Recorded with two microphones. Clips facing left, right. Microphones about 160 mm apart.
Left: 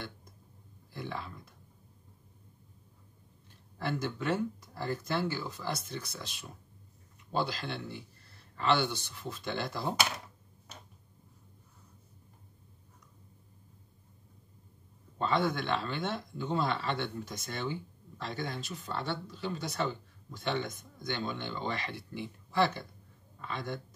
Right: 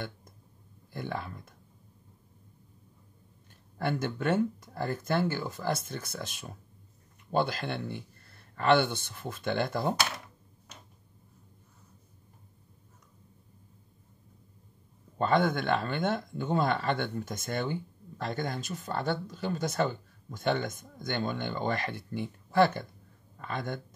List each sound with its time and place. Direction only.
0.9 s speech: 50° right (ahead or behind)
3.7 s speech: 55° right (ahead or behind)
15.1 s speech: 50° right (ahead or behind)